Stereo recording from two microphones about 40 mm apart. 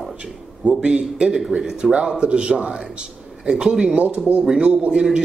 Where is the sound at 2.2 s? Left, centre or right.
Right.